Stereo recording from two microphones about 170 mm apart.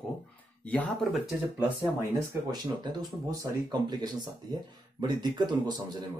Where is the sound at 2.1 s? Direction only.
25° right (ahead or behind).